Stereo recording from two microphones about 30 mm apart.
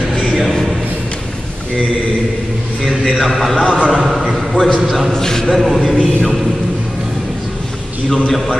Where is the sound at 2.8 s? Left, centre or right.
Centre.